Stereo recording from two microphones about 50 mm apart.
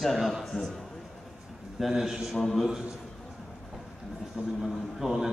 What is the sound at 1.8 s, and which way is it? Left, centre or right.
Speech, centre.